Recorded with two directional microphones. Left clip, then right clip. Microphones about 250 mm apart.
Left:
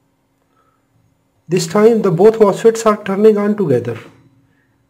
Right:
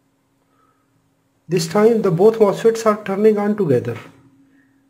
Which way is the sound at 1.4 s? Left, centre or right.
Centre.